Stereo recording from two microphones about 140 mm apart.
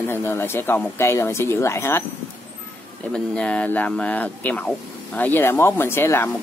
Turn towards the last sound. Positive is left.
turn(degrees=15)  # may be behind; listen again after turning